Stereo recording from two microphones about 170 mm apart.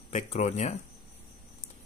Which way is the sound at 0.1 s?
40° left (ahead or behind).